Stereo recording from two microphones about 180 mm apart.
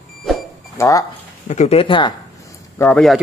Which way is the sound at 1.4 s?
40° left (ahead or behind).